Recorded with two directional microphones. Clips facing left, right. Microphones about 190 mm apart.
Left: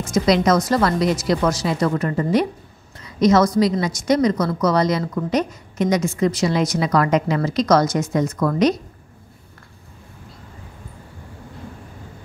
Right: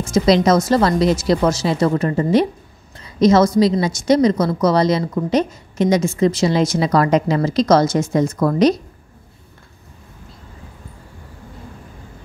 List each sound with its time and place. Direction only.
0.1 s a woman's voice: 30° right (ahead or behind)